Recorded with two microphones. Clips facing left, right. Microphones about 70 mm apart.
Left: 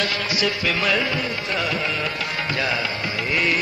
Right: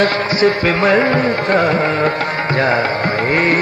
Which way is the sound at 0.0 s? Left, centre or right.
Right.